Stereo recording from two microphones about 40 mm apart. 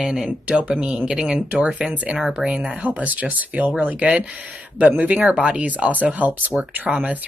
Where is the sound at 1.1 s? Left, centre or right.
Centre.